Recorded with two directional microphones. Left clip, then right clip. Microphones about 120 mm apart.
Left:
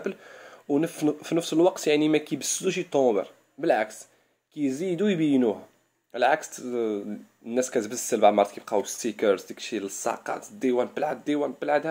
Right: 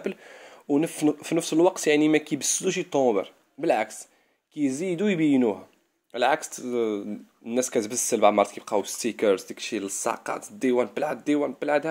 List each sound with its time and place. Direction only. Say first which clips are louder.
0.0 s speech: even; 20° right (ahead or behind)
6.1 s speech: even; 25° right (ahead or behind)